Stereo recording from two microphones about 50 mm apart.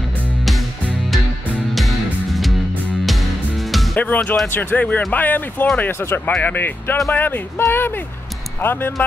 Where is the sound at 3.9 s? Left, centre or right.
Left.